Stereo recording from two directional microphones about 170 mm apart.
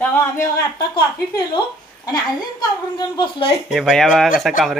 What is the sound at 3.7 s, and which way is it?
Speech, centre (ahead or behind).